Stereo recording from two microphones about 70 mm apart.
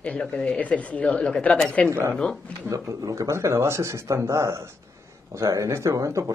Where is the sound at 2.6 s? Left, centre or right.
Right.